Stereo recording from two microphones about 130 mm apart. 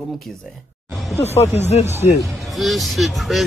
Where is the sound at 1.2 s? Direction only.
55° left (ahead or behind).